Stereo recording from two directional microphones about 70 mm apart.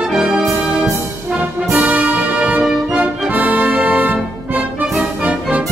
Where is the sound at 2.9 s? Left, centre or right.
Right.